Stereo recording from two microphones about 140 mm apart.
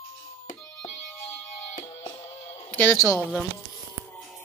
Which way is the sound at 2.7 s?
15° left (ahead or behind).